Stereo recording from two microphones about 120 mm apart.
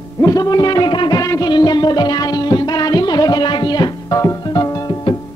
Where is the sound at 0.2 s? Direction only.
30° left (ahead or behind).